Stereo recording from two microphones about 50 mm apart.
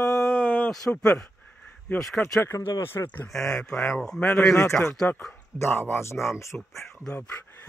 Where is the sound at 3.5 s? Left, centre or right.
Centre.